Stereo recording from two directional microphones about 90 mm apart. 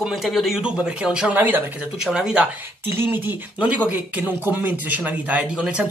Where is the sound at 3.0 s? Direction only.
20° right (ahead or behind).